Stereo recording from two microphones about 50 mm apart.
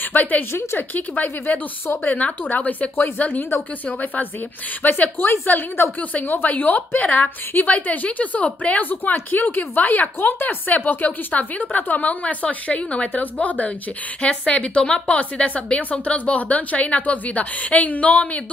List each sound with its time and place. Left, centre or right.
0.0 s a woman's voice: left
0.5 s a woman's voice: left
0.7 s a woman's voice: left
5.1 s a woman's voice: left
6.2 s a woman's voice: left